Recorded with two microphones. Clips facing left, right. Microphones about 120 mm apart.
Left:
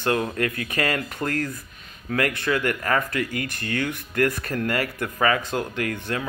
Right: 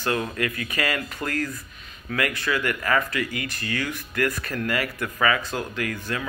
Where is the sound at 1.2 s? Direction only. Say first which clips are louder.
Left 1 dB; 40° left (ahead or behind).